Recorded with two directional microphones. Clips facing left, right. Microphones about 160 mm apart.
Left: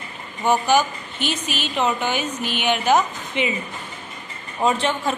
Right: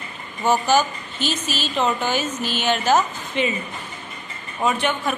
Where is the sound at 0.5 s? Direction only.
15° left (ahead or behind).